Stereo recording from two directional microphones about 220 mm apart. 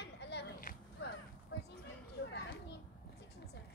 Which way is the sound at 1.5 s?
55° left (ahead or behind).